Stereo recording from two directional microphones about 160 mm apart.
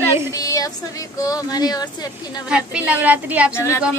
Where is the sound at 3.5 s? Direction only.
15° left (ahead or behind).